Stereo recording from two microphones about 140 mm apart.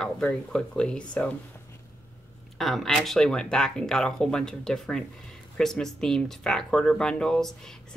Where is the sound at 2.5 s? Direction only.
Centre (ahead or behind).